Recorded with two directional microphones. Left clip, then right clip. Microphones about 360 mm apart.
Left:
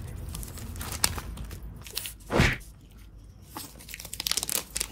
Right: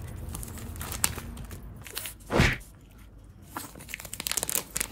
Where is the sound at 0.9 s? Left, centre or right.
Centre.